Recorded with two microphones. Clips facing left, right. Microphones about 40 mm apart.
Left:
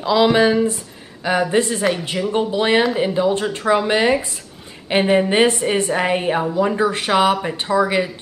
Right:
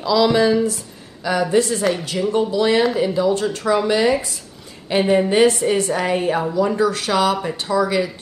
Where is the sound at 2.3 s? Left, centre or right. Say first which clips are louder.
Right 1 dB; left.